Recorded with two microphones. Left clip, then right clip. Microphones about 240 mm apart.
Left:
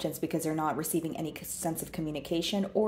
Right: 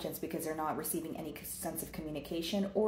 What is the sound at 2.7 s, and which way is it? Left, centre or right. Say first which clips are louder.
Speech: left 3 dB; left.